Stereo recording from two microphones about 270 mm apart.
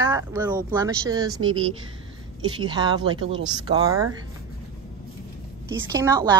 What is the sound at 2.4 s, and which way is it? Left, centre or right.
Speech, centre.